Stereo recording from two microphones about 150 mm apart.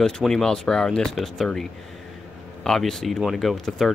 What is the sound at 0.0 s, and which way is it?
A man's voice, 5° left (ahead or behind).